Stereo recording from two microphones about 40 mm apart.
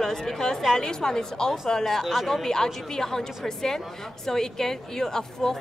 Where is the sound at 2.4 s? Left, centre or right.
Centre.